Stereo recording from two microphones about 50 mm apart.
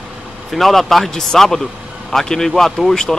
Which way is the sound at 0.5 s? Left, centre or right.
Centre.